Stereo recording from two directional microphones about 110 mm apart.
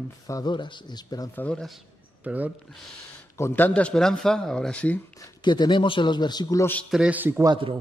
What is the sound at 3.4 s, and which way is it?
Speech, 20° left (ahead or behind).